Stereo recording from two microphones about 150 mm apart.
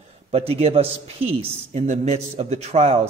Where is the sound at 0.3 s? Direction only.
40° right (ahead or behind).